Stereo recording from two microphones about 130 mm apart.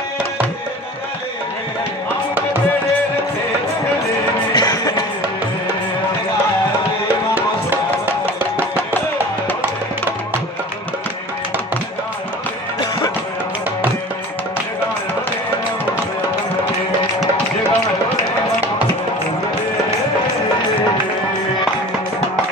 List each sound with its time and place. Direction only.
4.6 s music: 30° left (ahead or behind)